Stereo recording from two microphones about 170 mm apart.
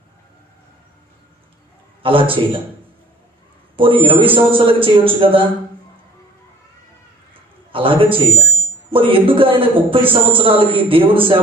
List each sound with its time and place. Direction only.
2.0 s a man's voice: 30° right (ahead or behind)
3.7 s a man's voice: 30° right (ahead or behind)
7.7 s a man's voice: 30° right (ahead or behind)